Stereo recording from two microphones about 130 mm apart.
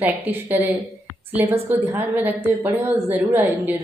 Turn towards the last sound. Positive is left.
turn(degrees=-15)  # may be behind; listen again after turning